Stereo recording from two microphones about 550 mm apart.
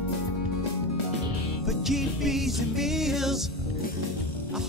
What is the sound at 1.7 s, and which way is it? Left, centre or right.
Music, centre.